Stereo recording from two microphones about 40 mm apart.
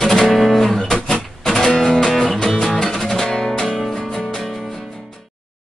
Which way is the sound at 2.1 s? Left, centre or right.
Centre.